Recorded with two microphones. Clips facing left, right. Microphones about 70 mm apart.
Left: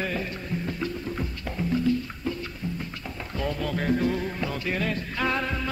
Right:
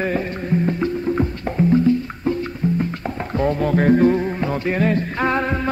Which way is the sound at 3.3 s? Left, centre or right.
Right.